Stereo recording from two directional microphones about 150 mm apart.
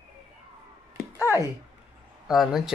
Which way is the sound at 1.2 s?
15° right (ahead or behind).